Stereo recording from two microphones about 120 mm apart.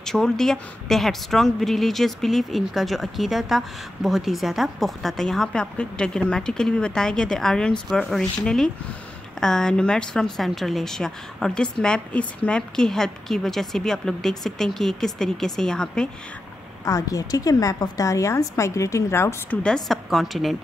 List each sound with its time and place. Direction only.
0.0 s a woman's voice: 5° left (ahead or behind)
16.8 s a woman's voice: 30° left (ahead or behind)
19.6 s a woman's voice: 5° left (ahead or behind)